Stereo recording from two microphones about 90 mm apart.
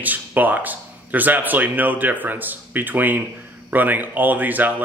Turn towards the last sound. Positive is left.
turn(degrees=-20)  # may be behind; listen again after turning